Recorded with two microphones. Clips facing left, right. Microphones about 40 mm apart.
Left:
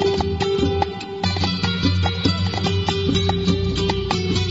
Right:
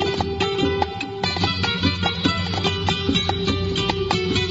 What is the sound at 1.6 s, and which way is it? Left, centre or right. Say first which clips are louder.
Music: left 1 dB; right.